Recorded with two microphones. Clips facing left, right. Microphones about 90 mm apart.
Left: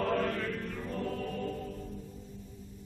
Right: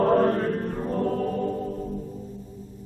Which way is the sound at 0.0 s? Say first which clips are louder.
Right 11 dB; 40° right (ahead or behind).